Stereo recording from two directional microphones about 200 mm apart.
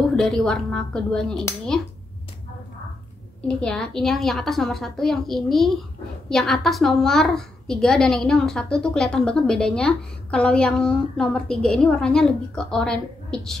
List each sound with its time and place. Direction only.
0.1 s a woman's voice: 5° left (ahead or behind)
3.4 s a woman's voice: 5° left (ahead or behind)